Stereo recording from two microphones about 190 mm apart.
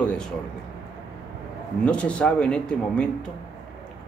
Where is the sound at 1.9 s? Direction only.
5° left (ahead or behind).